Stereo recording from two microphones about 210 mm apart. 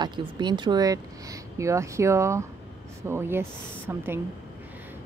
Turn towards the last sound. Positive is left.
turn(degrees=-10)  # may be behind; listen again after turning